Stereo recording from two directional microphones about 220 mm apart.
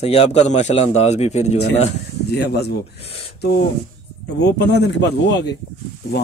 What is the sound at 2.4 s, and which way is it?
Speech, 50° left (ahead or behind).